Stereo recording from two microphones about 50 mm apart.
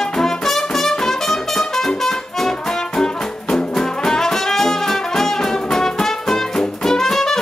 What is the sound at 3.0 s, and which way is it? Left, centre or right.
Music, centre.